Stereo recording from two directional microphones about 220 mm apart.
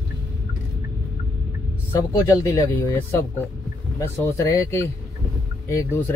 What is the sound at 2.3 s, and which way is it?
Speech, 15° left (ahead or behind).